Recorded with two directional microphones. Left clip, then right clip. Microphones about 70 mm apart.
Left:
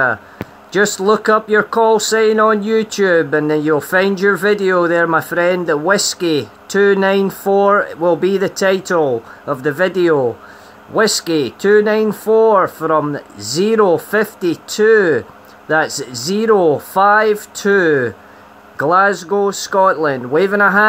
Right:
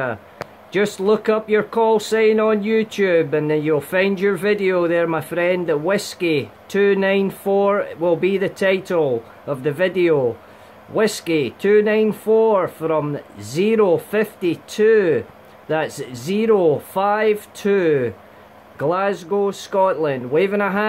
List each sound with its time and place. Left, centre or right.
0.7 s speech: left
16.3 s speech: left